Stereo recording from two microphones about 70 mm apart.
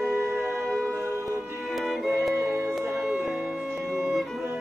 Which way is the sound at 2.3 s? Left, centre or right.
Right.